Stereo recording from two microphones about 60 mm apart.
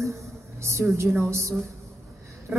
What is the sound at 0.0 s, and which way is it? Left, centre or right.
A woman's voice, right.